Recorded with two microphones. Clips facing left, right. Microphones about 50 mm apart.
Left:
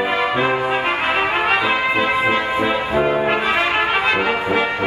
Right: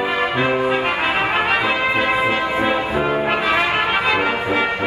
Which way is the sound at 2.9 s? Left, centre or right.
Left.